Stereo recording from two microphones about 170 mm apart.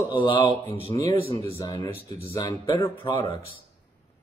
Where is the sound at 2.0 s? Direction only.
35° right (ahead or behind).